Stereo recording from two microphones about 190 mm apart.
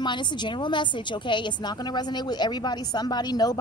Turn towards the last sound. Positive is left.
turn(degrees=20)  # may be behind; listen again after turning